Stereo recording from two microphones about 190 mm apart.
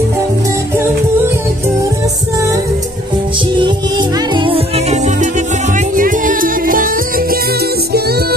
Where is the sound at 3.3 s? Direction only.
25° right (ahead or behind).